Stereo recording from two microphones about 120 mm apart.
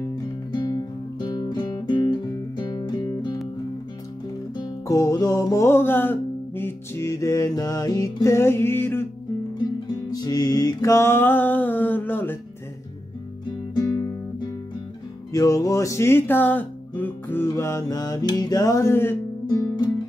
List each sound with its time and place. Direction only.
0.6 s guitar: 35° left (ahead or behind)
2.6 s music: 35° left (ahead or behind)
4.6 s music: 30° left (ahead or behind)
9.6 s music: 35° left (ahead or behind); by 12.4 s 15° left (ahead or behind)
13.5 s music: 35° left (ahead or behind)
15.3 s music: 30° left (ahead or behind)
19.4 s music: 35° left (ahead or behind)